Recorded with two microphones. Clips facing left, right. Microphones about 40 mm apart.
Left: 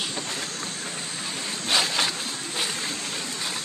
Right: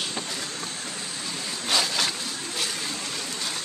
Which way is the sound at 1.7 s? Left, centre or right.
Left.